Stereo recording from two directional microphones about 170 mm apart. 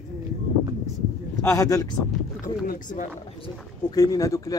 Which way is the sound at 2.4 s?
55° left (ahead or behind).